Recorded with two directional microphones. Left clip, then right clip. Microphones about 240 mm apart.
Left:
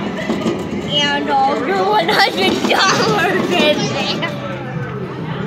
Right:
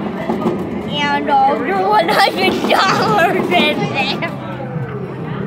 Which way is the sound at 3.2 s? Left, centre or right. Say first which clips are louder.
Right 2 dB; centre.